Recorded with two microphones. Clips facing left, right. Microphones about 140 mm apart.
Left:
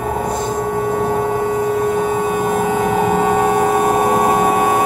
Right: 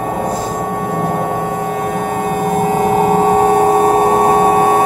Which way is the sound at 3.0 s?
35° right (ahead or behind).